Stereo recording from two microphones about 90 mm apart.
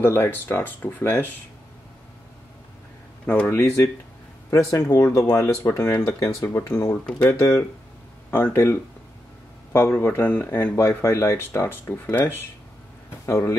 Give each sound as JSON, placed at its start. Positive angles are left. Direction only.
{"t": 0.0, "sound": "speech", "side_deg": 25}
{"t": 3.4, "sound": "speech", "side_deg": 30}
{"t": 7.2, "sound": "speech", "side_deg": 35}